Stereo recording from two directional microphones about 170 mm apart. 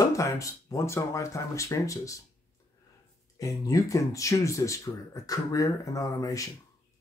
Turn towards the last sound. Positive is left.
turn(degrees=20)  # may be behind; listen again after turning